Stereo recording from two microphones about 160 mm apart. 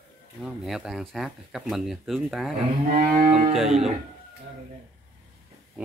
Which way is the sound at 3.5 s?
Centre (ahead or behind).